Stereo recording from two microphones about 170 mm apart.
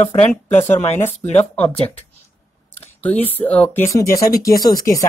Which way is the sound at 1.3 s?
10° left (ahead or behind).